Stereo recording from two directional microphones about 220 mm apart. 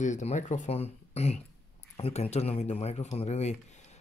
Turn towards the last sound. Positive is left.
turn(degrees=30)  # may be behind; listen again after turning